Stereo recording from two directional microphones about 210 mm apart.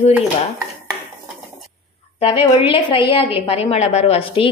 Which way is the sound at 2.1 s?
30° left (ahead or behind).